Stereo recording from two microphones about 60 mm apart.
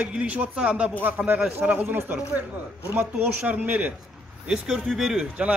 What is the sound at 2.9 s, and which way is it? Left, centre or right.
Speech, right.